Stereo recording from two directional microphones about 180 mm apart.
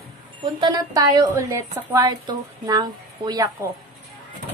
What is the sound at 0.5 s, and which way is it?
A woman's voice, 20° right (ahead or behind).